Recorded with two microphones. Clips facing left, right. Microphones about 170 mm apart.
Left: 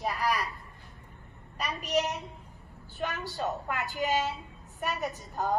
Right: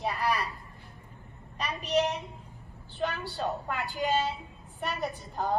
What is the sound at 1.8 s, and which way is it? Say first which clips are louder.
Speech: right 2 dB; 30° right (ahead or behind).